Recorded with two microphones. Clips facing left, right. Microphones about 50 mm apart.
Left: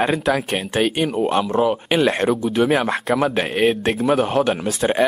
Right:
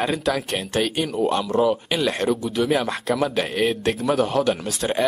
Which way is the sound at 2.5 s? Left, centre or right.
Left.